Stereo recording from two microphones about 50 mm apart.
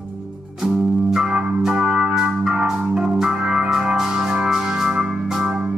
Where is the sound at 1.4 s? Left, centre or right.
Right.